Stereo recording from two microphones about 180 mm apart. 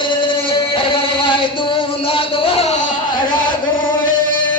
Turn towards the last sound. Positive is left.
turn(degrees=40)  # may be behind; listen again after turning